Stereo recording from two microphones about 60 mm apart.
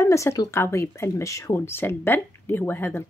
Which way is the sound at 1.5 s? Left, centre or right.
Left.